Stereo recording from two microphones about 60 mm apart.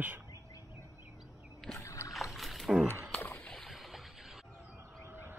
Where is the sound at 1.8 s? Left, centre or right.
Left.